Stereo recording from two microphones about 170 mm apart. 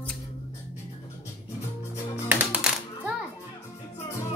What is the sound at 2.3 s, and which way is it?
Music, 5° right (ahead or behind).